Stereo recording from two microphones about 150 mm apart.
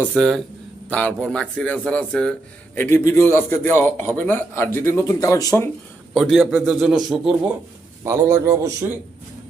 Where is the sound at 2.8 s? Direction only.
15° left (ahead or behind).